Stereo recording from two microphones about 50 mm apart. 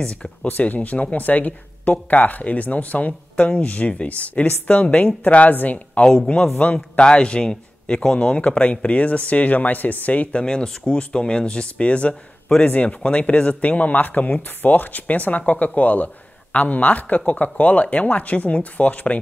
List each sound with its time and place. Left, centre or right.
0.0 s speech: left
0.5 s speech: left
6.0 s a man's voice: centre
6.6 s speech: left
7.0 s a man's voice: centre
10.4 s speech: centre